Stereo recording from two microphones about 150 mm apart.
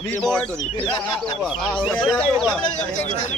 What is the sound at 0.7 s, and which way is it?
Speech, 35° left (ahead or behind).